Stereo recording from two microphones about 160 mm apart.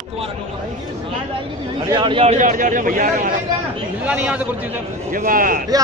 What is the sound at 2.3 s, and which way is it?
Speech, 55° right (ahead or behind).